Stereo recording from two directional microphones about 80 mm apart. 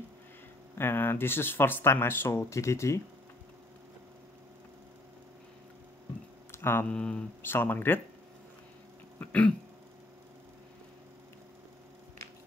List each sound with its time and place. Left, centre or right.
0.7 s speech: left
6.5 s a sound: left
6.9 s speech: centre
7.4 s speech: left
9.2 s throat clearing: centre